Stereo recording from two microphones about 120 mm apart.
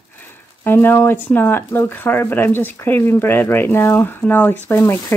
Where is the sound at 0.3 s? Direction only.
20° left (ahead or behind).